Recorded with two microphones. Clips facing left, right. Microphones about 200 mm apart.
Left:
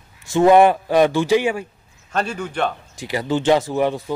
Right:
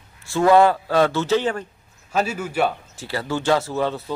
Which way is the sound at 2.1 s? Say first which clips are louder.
Right 1 dB; 5° right (ahead or behind).